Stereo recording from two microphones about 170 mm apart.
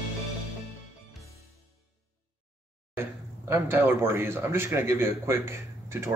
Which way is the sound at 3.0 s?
15° right (ahead or behind).